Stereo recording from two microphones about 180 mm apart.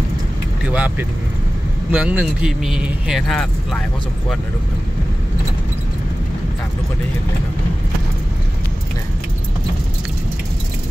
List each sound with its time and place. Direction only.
0.7 s speech: 10° right (ahead or behind)